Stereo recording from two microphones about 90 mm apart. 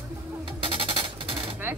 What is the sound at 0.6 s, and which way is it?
Music, 90° right.